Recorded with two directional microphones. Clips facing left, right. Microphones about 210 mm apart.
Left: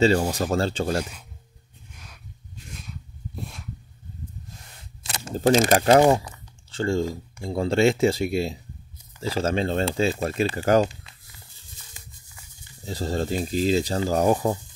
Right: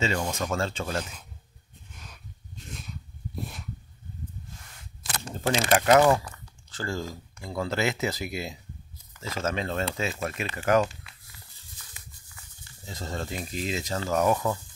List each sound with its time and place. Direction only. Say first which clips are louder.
0.3 s speech: left 5 dB; 35° left (ahead or behind)
5.2 s speech: left 9 dB; 35° left (ahead or behind)
12.8 s speech: left 8 dB; 35° left (ahead or behind)